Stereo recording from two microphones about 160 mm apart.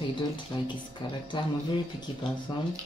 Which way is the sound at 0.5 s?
30° left (ahead or behind).